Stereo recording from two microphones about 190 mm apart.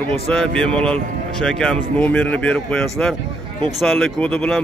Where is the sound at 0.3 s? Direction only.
5° left (ahead or behind).